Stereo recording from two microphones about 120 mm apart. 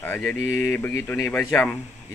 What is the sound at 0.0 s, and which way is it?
Speech, 15° left (ahead or behind).